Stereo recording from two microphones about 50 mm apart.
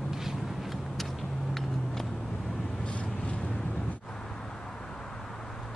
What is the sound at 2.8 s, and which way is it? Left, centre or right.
Vehicle, left.